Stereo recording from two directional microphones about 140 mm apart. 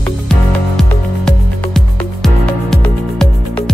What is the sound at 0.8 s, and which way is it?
Music, 5° left (ahead or behind).